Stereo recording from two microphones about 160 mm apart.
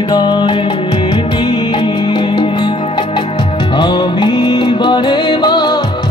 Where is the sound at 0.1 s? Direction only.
25° left (ahead or behind).